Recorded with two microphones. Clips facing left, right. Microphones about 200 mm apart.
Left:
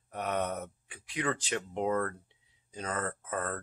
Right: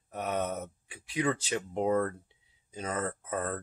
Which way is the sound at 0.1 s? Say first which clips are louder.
Right 1 dB; 5° right (ahead or behind).